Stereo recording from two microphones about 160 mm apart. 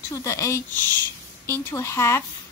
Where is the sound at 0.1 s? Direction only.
20° left (ahead or behind).